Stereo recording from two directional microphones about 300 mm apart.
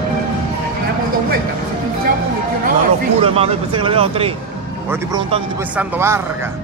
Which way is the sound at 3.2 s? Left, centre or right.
Centre.